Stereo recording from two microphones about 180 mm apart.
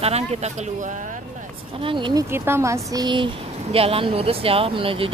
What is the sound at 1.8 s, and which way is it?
Speech, 25° right (ahead or behind).